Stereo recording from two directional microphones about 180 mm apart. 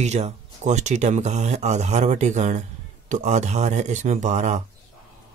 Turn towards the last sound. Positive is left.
turn(degrees=-40)  # may be behind; listen again after turning